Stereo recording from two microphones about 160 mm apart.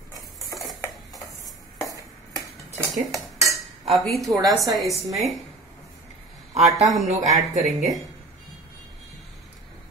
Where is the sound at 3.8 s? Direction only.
Centre (ahead or behind).